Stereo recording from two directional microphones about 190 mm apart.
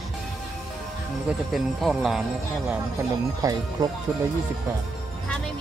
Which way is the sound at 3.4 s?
20° right (ahead or behind).